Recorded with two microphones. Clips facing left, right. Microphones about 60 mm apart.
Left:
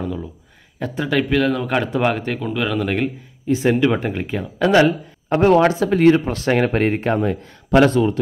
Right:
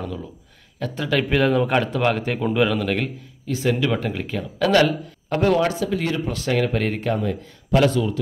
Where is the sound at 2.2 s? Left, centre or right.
Centre.